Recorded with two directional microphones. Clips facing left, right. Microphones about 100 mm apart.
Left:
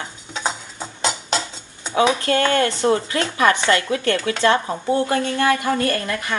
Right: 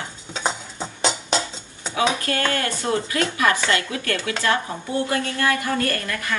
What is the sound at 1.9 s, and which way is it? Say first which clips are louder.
Speech: left 5 dB; 30° left (ahead or behind).